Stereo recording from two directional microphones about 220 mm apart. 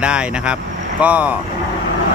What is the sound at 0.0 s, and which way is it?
Speech, 5° right (ahead or behind).